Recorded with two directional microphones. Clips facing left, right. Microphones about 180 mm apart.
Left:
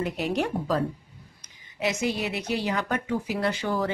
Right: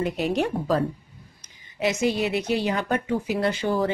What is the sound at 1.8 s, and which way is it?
A woman's voice, 25° right (ahead or behind).